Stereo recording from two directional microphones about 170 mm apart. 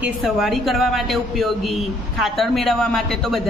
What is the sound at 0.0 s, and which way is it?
Speech, centre (ahead or behind).